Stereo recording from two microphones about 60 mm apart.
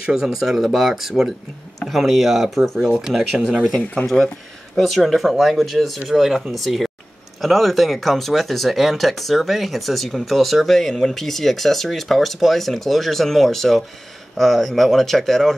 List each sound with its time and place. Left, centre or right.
0.0 s speech: centre
3.0 s speech: centre
3.8 s speech: left
4.7 s speech: centre